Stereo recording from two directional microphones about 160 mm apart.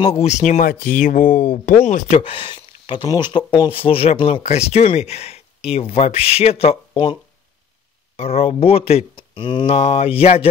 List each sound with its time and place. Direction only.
0.0 s speech: 45° left (ahead or behind)
6.9 s a sound: 30° left (ahead or behind)
8.2 s speech: 40° left (ahead or behind)
9.8 s speech: 40° left (ahead or behind)